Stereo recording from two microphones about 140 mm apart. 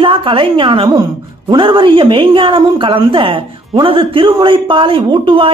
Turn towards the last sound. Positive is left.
turn(degrees=-40)  # may be behind; listen again after turning